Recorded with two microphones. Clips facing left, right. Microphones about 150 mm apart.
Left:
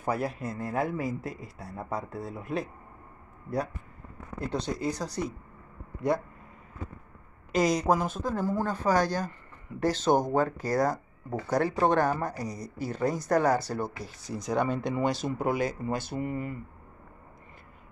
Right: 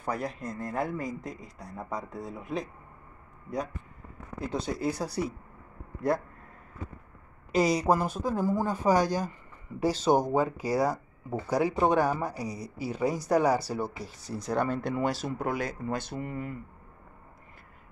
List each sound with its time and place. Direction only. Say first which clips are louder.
0.0 s a man's voice: left 3 dB; 5° left (ahead or behind)
4.4 s a man's voice: even; centre (ahead or behind)
7.5 s a man's voice: even; 5° right (ahead or behind)